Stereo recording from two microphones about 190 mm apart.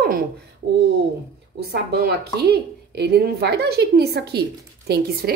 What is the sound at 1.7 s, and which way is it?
A woman's voice, 55° right (ahead or behind).